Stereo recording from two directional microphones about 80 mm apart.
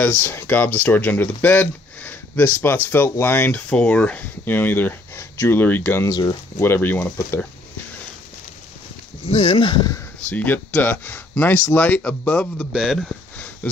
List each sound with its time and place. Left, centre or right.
0.0 s speech: left
6.0 s speech: left
6.6 s speech: left
9.5 s speech: left
10.3 s speech: left
12.7 s speech: centre